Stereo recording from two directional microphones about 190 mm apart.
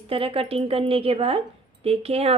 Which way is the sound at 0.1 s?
30° right (ahead or behind).